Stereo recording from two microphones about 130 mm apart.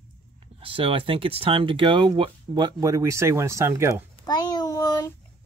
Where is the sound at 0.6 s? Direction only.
45° right (ahead or behind); by 4.1 s 20° right (ahead or behind).